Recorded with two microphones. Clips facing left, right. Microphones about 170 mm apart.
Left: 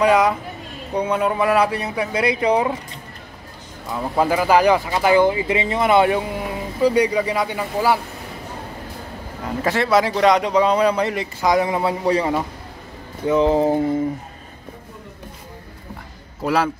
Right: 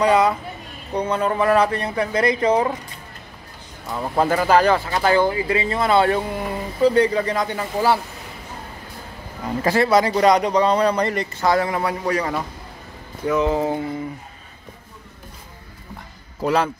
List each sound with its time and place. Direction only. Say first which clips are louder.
0.0 s speech: left 1 dB; 10° left (ahead or behind)
3.9 s speech: left 1 dB; 5° left (ahead or behind)
9.6 s speech: right 1 dB; centre (ahead or behind)
11.5 s a man's voice: left 2 dB; 20° left (ahead or behind)
16.4 s speech: even; 5° left (ahead or behind)